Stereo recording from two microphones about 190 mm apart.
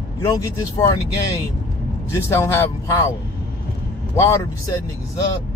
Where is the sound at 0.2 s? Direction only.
15° left (ahead or behind).